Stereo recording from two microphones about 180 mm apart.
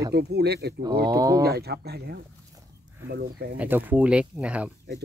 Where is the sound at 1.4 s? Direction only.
65° right (ahead or behind).